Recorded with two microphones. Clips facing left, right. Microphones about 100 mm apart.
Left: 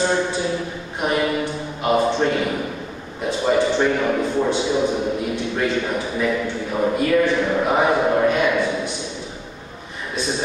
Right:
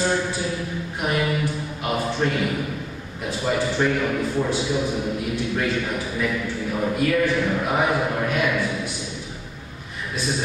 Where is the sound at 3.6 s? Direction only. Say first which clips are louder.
Left 4 dB; 25° left (ahead or behind).